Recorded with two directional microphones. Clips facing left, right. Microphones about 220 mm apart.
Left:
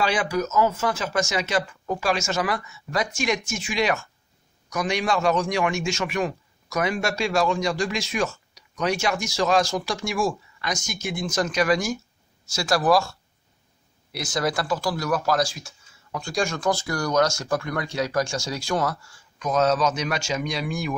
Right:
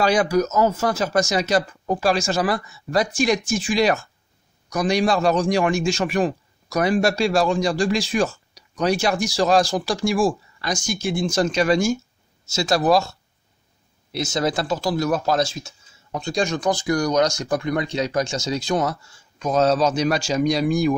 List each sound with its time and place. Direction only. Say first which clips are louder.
0.0 s a man's voice: right 5 dB; 40° right (ahead or behind); by 13.1 s 25° right (ahead or behind)
14.1 s speech: right 3 dB; 25° right (ahead or behind)